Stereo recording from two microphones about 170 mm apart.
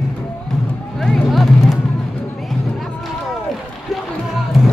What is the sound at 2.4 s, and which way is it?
Music, centre (ahead or behind).